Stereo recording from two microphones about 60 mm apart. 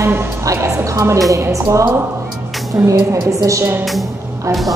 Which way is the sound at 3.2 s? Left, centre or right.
Right.